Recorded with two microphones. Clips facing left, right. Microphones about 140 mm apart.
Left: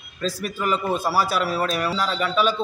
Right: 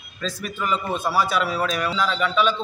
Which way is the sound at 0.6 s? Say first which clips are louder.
Left 1 dB; 5° left (ahead or behind).